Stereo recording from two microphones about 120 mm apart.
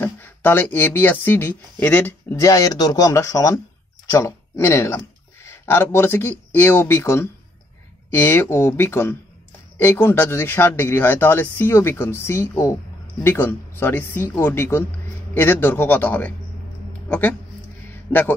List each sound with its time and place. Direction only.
0.0 s speech: 15° left (ahead or behind)